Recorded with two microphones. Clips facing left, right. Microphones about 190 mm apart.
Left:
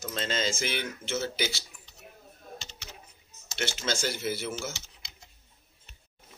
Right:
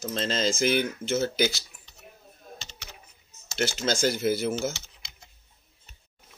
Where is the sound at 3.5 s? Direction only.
40° right (ahead or behind).